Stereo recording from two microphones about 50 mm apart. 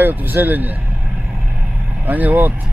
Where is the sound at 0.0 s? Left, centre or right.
Right.